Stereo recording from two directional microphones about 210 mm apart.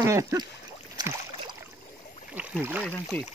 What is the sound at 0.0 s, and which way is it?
Speech, 15° right (ahead or behind).